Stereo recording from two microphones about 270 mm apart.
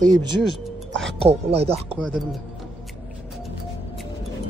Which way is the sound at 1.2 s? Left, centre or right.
Right.